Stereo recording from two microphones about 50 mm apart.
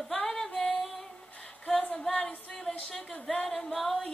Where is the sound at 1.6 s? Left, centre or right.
Centre.